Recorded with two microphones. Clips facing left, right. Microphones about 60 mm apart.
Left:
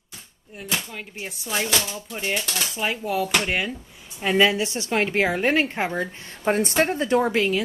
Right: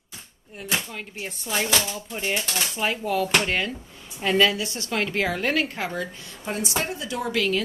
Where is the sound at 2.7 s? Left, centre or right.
Centre.